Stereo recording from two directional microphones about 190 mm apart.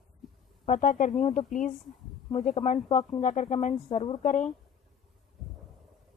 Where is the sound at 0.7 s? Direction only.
40° left (ahead or behind).